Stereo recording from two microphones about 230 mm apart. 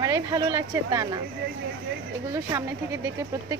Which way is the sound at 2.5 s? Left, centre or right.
Centre.